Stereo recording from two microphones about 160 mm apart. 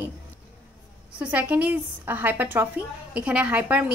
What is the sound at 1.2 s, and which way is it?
A woman's voice, 10° right (ahead or behind).